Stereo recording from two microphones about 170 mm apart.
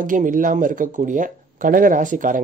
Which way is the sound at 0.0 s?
50° right (ahead or behind).